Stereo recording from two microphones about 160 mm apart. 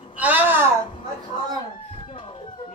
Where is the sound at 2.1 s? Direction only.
30° left (ahead or behind).